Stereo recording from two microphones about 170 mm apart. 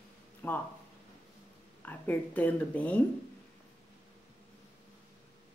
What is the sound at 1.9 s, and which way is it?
Speech, 10° left (ahead or behind).